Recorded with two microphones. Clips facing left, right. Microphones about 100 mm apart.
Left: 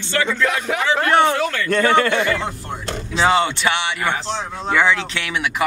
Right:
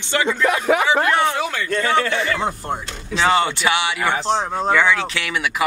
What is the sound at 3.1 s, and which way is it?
Speech, 5° left (ahead or behind).